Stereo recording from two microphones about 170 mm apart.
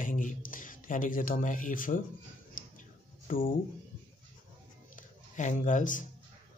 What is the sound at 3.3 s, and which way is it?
Speech, 55° left (ahead or behind).